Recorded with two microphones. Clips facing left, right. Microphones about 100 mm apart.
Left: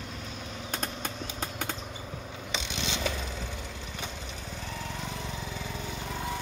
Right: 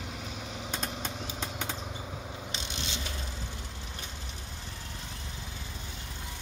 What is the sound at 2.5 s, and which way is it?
Mechanisms, 90° left.